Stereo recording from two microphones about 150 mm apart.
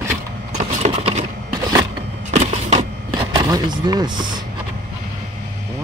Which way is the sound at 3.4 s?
25° right (ahead or behind).